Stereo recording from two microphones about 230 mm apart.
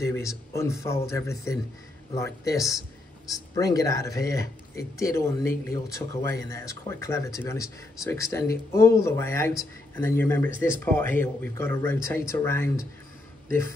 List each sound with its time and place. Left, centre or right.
0.0 s a man's voice: centre